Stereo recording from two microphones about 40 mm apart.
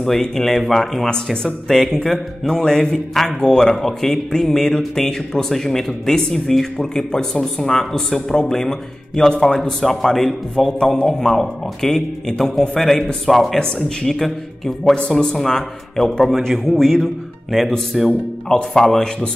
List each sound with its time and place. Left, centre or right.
0.2 s speech: centre
1.1 s speech: centre
1.7 s speech: centre
3.7 s speech: centre
6.8 s speech: centre
10.7 s speech: left
11.1 s speech: centre
15.3 s speech: centre
18.5 s speech: centre